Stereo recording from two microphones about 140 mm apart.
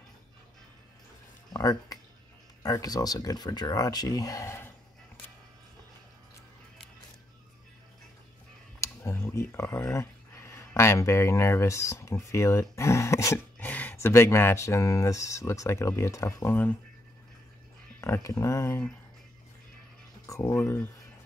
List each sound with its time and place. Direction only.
1.5 s speech: 25° left (ahead or behind)
8.8 s a sound: 20° left (ahead or behind)
10.5 s speech: 20° left (ahead or behind)
18.0 s speech: 20° left (ahead or behind)
20.2 s speech: 20° left (ahead or behind)